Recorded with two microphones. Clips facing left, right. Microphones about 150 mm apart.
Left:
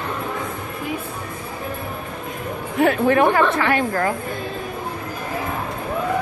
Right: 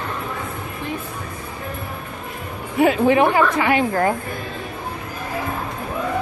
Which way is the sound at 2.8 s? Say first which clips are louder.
Right 1 dB; 10° right (ahead or behind).